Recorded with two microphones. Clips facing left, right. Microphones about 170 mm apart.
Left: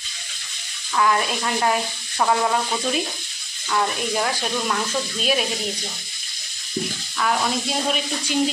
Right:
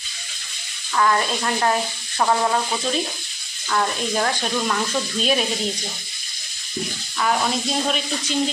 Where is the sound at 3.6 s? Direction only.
5° left (ahead or behind).